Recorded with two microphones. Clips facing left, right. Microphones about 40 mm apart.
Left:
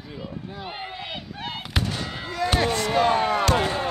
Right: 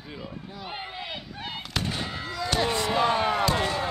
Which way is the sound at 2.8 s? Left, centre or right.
Left.